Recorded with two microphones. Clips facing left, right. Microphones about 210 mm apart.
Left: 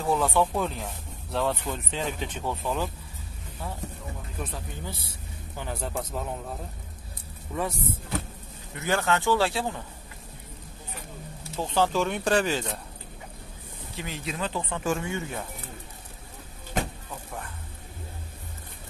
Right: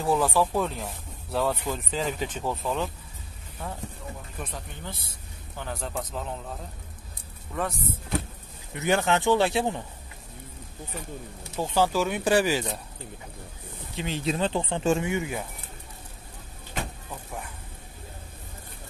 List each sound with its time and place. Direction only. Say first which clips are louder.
0.0 s speech: right 1 dB; centre (ahead or behind)
8.7 s speech: right 2 dB; 20° right (ahead or behind)
11.5 s speech: right 1 dB; 10° right (ahead or behind)
13.9 s speech: right 6 dB; 30° right (ahead or behind)